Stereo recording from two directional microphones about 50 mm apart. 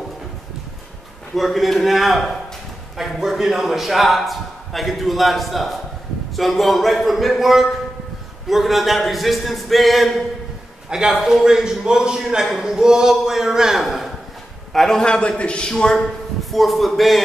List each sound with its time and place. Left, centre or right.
1.3 s a man's voice: centre
10.9 s a man's voice: centre
11.1 s a man's voice: centre
11.4 s a man's voice: centre
14.7 s a man's voice: centre
16.5 s a man's voice: centre